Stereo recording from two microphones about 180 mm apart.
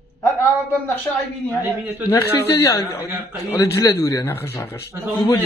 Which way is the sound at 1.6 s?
10° right (ahead or behind).